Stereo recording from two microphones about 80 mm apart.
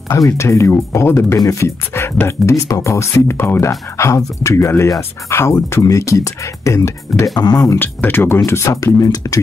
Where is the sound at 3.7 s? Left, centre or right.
Left.